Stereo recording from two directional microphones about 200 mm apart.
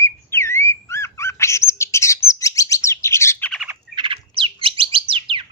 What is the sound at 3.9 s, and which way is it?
Bird, 25° right (ahead or behind).